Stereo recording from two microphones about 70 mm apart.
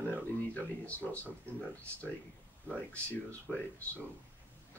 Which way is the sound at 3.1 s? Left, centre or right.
Left.